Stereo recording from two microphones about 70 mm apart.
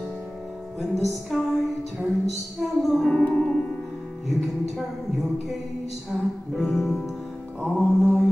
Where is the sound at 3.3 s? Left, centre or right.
Centre.